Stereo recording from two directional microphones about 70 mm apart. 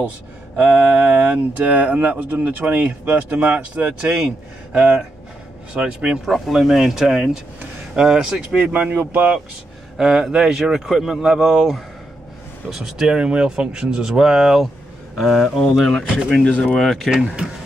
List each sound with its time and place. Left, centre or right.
0.6 s speech: right
5.8 s speech: centre
6.2 s speech: centre
8.7 s speech: right
9.9 s speech: centre
16.4 s speech: centre
16.8 s speech: centre
17.1 s speech: centre